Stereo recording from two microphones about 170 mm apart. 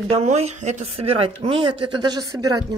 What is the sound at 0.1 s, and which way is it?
Speech, 40° right (ahead or behind).